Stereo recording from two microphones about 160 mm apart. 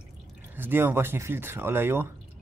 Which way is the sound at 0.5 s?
15° right (ahead or behind).